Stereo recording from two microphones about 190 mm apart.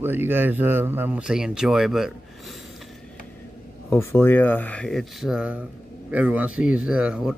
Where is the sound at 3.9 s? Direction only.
10° left (ahead or behind); by 7.3 s 5° right (ahead or behind).